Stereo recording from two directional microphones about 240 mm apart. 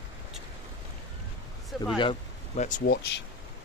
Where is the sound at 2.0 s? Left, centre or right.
Left.